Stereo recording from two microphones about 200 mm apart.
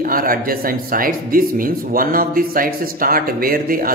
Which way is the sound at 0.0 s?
45° right (ahead or behind).